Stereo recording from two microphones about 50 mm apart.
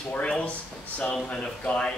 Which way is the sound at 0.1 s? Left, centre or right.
Left.